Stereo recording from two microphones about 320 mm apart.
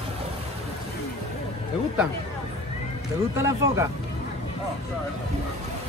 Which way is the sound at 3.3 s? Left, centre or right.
Centre.